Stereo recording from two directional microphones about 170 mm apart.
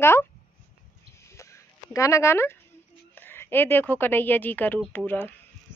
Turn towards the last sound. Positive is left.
turn(degrees=10)  # may be behind; listen again after turning